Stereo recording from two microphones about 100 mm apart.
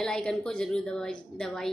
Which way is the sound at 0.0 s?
5° left (ahead or behind).